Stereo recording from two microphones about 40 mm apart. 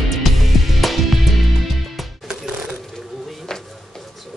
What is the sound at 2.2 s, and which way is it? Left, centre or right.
Music, centre.